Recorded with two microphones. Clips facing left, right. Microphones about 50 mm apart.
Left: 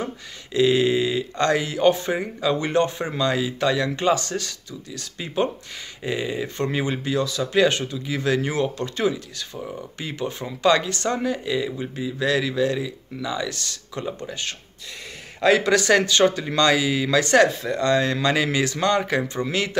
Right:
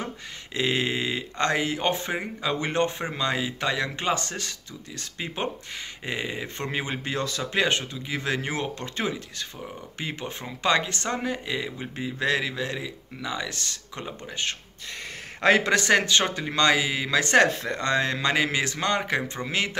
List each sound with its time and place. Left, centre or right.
0.6 s speech: right
7.1 s speech: right
7.5 s speech: right
15.4 s speech: right